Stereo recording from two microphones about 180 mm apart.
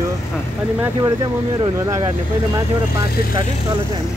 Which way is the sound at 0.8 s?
20° right (ahead or behind).